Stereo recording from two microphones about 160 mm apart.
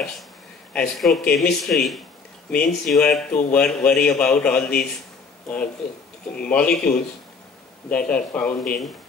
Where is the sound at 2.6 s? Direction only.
80° left.